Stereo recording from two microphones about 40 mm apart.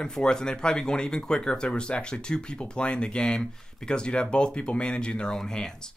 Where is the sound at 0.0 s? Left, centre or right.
Centre.